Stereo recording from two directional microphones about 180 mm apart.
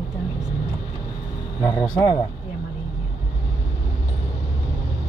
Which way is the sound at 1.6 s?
20° left (ahead or behind).